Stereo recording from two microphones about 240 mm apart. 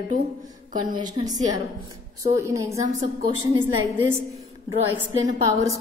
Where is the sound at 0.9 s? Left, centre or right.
Centre.